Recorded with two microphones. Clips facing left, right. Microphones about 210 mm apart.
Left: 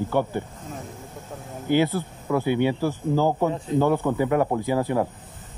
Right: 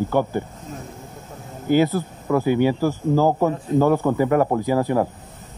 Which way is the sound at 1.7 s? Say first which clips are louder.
Right 3 dB; 40° right (ahead or behind).